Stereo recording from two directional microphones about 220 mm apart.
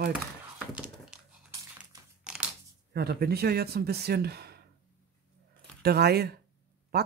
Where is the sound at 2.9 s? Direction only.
45° right (ahead or behind).